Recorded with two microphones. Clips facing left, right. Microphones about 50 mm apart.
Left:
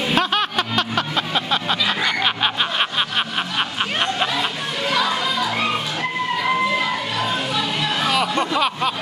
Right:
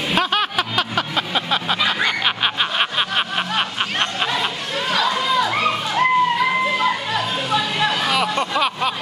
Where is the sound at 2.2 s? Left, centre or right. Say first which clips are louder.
Even; centre.